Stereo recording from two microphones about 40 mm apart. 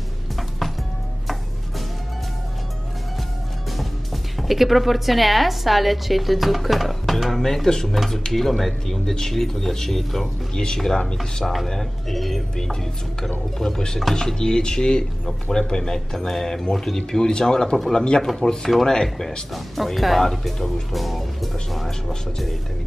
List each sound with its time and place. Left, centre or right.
3.7 s a woman's voice: centre
10.5 s speech: centre
11.7 s speech: centre
14.1 s speech: centre